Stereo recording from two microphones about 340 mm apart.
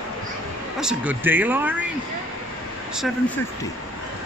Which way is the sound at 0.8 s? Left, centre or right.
Centre.